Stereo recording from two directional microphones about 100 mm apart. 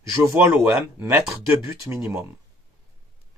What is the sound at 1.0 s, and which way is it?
Speech, 25° right (ahead or behind).